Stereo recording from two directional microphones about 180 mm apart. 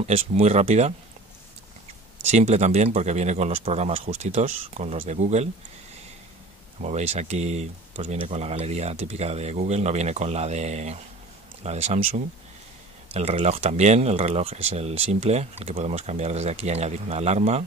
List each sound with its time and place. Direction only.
0.0 s speech: 35° right (ahead or behind)
2.2 s speech: 40° right (ahead or behind)
6.8 s speech: 40° right (ahead or behind)